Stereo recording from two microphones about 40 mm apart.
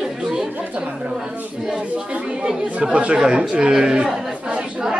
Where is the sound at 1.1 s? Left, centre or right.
Centre.